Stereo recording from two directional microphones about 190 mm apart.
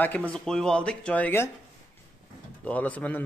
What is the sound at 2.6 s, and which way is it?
Speech, 10° left (ahead or behind).